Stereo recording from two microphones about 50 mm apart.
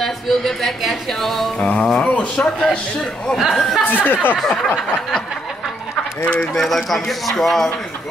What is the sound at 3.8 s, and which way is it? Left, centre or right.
Speech, left.